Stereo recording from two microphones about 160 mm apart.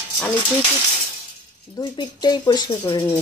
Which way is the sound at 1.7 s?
25° left (ahead or behind).